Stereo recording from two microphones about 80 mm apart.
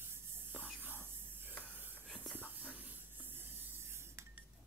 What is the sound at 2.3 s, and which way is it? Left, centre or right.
Spray, right.